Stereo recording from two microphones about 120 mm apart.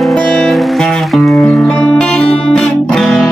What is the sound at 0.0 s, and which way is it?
Music, centre (ahead or behind).